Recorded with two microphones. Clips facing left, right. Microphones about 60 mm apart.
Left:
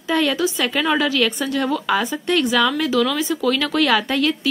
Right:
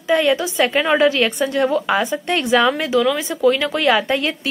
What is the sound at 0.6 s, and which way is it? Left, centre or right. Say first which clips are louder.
A woman's voice: right 4 dB; right.